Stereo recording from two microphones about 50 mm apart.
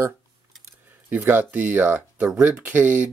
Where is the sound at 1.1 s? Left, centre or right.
Right.